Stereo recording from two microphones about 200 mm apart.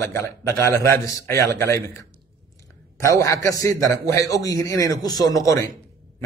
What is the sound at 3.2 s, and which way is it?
A man's voice, 15° left (ahead or behind).